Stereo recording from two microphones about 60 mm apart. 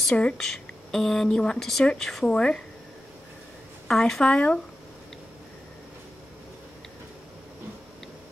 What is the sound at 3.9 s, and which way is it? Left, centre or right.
Speech, centre.